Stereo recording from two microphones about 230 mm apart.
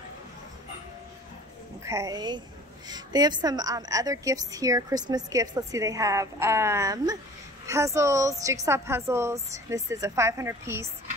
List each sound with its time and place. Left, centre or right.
1.9 s a woman's voice: centre